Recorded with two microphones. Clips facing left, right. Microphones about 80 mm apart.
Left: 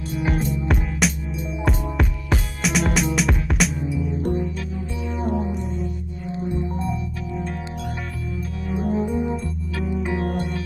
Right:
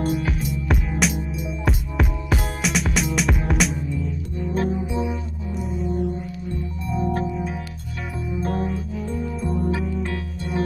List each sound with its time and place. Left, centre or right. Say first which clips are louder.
0.5 s music: left 1 dB; centre
9.0 s music: left 4 dB; centre